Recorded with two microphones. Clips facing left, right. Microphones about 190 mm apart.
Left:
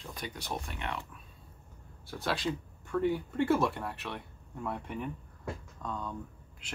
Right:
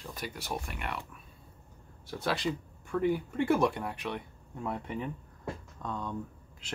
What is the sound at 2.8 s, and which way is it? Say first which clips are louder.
Speech: right 1 dB; 15° right (ahead or behind).